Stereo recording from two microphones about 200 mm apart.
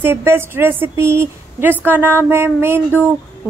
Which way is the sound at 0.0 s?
10° right (ahead or behind).